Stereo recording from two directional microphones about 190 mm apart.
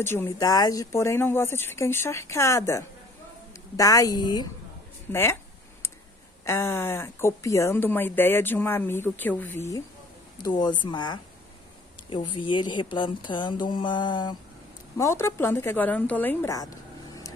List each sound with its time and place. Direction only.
0.0 s speech: 15° left (ahead or behind)
5.1 s a sound: 15° left (ahead or behind)
6.4 s speech: 15° left (ahead or behind)
10.3 s speech: 20° left (ahead or behind)
15.0 s speech: 15° left (ahead or behind)